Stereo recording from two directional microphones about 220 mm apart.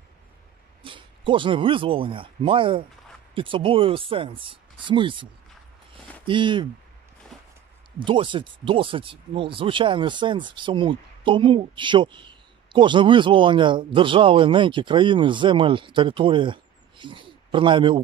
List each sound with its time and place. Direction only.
0.8 s speech: 20° right (ahead or behind)
7.3 s a sound: centre (ahead or behind)
8.0 s a man's voice: 20° right (ahead or behind)